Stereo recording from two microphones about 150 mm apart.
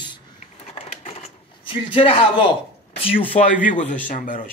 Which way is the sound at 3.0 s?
40° left (ahead or behind).